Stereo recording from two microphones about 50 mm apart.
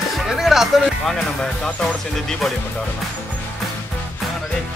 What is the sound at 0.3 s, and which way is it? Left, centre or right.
Music, centre.